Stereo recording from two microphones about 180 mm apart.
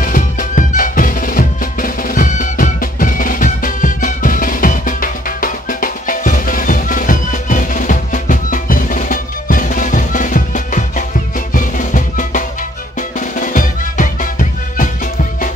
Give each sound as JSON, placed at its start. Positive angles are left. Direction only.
{"t": 0.0, "sound": "music", "side_deg": 50}